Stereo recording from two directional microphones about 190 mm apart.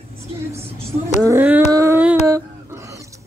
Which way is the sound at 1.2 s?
10° right (ahead or behind).